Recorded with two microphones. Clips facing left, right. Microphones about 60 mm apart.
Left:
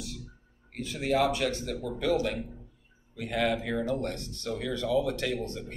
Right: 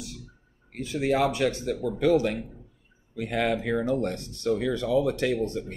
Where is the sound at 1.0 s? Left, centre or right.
Right.